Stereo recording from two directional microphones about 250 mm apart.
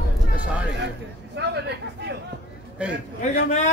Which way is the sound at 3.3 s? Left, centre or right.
Left.